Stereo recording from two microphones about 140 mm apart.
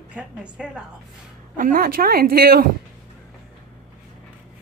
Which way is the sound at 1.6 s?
85° right.